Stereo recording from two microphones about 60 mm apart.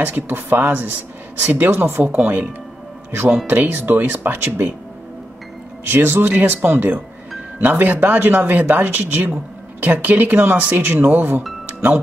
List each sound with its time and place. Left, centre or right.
0.0 s speech: right
3.4 s speech: right
5.9 s speech: right
11.6 s music: right